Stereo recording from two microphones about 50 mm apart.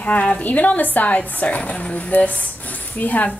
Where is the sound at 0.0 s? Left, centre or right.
Left.